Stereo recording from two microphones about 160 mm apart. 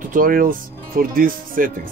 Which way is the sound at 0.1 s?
60° right (ahead or behind).